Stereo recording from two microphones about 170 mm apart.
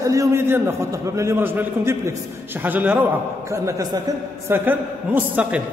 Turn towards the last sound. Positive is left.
turn(degrees=-10)  # may be behind; listen again after turning